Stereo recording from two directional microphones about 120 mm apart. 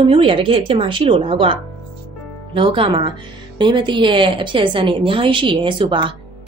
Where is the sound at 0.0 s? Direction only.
50° right (ahead or behind).